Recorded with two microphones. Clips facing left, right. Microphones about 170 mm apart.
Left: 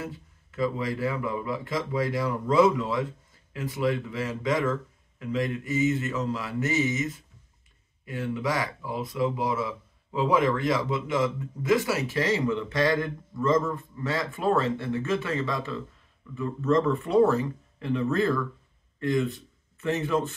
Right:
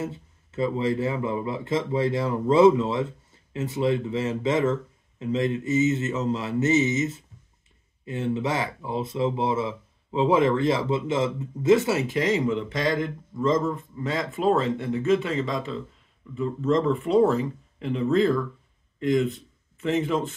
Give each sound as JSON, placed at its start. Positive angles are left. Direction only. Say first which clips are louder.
{"t": 0.0, "sound": "a man's voice", "louder": "right 5 dB", "side_deg": -25}